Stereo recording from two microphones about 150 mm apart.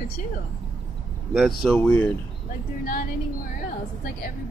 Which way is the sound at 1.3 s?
Centre (ahead or behind).